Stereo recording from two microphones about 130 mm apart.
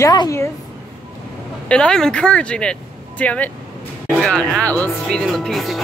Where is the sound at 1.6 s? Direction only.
5° left (ahead or behind).